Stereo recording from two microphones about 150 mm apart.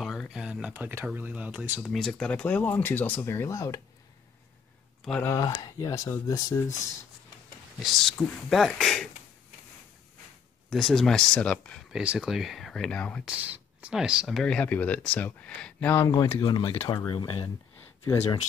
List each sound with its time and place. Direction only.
0.0 s speech: centre (ahead or behind)
1.8 s speech: 5° left (ahead or behind); by 3.8 s 20° left (ahead or behind)
5.2 s speech: 20° left (ahead or behind)
7.8 s speech: centre (ahead or behind)
10.7 s speech: centre (ahead or behind)
11.9 s speech: 5° right (ahead or behind)
13.2 s speech: 10° right (ahead or behind); by 16.0 s 10° left (ahead or behind)
16.0 s speech: 25° left (ahead or behind)
16.8 s speech: 20° left (ahead or behind)
17.1 s speech: 35° left (ahead or behind)
18.0 s speech: 20° left (ahead or behind)